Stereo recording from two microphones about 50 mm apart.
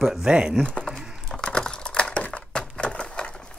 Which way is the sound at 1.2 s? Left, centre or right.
Centre.